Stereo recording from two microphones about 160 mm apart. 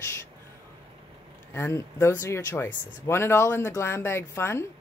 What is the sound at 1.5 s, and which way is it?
Speech, 15° left (ahead or behind).